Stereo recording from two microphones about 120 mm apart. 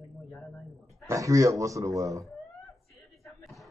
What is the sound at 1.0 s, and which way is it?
A man's voice, 25° right (ahead or behind).